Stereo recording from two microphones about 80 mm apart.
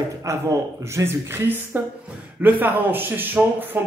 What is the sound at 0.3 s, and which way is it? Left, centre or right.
Speech, right.